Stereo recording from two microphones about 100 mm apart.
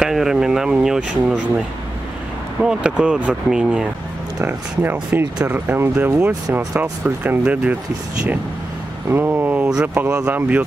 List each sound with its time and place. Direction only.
0.0 s speech: 5° right (ahead or behind)
2.6 s speech: 10° right (ahead or behind)
4.4 s speech: 20° right (ahead or behind)
9.1 s speech: 20° right (ahead or behind)